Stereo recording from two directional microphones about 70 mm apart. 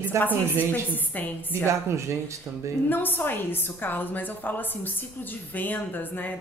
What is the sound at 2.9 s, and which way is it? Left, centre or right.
A woman's voice, left.